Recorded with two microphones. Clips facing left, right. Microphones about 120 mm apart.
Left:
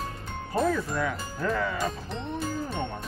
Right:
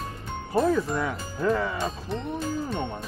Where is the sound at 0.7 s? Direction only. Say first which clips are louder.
Right 3 dB; 25° right (ahead or behind).